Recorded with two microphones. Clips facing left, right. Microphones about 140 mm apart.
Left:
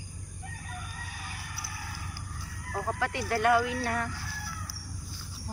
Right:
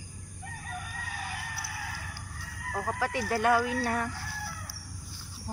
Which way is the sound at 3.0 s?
15° right (ahead or behind).